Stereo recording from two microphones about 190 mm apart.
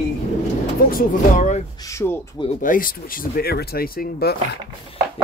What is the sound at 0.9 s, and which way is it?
Speech, 40° left (ahead or behind).